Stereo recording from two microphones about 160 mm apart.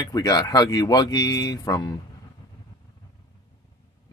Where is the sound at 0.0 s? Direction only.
25° left (ahead or behind).